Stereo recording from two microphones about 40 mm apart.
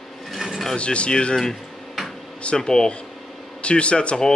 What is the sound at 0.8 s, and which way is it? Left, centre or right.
Speech, left.